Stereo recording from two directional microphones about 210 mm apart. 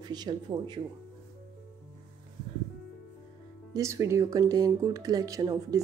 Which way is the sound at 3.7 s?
15° right (ahead or behind).